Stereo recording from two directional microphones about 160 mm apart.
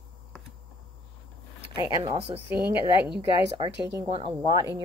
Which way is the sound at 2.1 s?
40° right (ahead or behind).